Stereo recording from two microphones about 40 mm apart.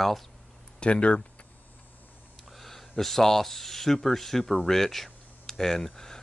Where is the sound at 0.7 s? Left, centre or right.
Left.